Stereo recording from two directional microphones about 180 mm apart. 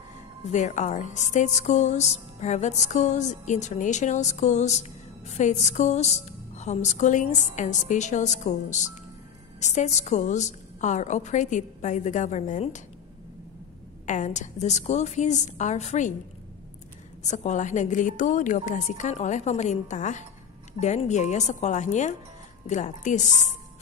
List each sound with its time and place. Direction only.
0.5 s speech: 40° left (ahead or behind)
14.0 s speech: 40° left (ahead or behind)
17.2 s a woman's voice: 40° left (ahead or behind)